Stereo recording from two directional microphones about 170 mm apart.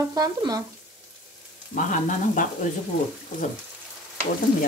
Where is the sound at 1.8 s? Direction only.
50° left (ahead or behind).